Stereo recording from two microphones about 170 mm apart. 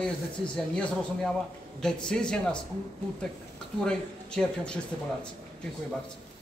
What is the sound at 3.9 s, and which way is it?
Speech, 5° left (ahead or behind).